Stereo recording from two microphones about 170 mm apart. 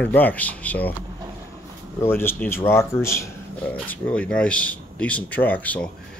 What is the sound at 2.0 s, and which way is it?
Speech, 15° left (ahead or behind).